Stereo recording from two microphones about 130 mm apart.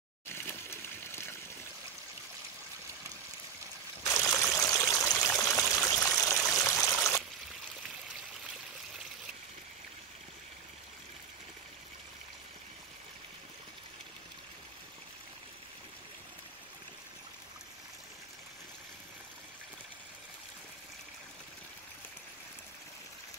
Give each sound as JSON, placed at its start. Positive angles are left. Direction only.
{"t": 0.3, "sound": "water", "side_deg": 20}
{"t": 4.0, "sound": "stream", "side_deg": 25}